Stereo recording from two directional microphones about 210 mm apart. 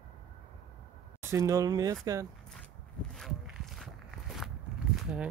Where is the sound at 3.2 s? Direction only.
Centre (ahead or behind).